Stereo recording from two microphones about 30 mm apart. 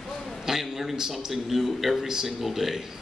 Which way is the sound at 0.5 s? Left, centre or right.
Centre.